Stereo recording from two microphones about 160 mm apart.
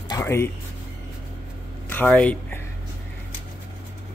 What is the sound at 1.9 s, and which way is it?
Speech, 10° left (ahead or behind).